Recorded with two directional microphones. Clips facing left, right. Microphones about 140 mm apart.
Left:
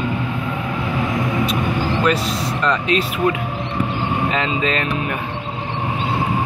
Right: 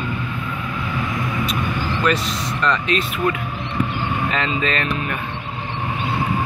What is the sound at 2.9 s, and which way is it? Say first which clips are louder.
Speech: left 3 dB; 40° right (ahead or behind).